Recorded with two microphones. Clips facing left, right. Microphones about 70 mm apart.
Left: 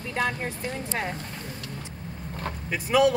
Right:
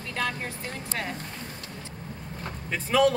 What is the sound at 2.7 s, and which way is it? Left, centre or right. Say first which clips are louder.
Speech: left 1 dB; centre.